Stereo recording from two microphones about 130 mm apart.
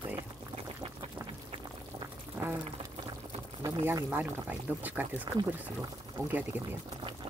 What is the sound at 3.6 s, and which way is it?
Speech, 20° right (ahead or behind).